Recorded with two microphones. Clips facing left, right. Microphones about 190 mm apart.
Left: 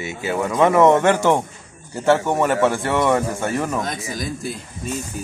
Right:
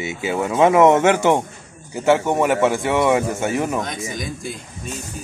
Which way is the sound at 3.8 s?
Centre (ahead or behind).